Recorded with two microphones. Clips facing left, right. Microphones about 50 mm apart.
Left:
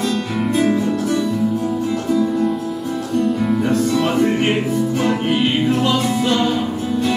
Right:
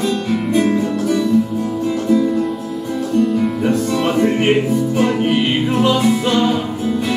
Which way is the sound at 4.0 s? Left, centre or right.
Centre.